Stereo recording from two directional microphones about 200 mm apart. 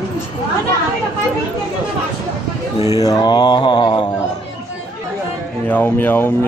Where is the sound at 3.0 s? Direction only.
20° left (ahead or behind).